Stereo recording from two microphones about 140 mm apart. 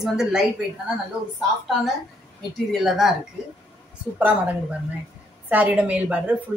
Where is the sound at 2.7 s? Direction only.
Centre (ahead or behind).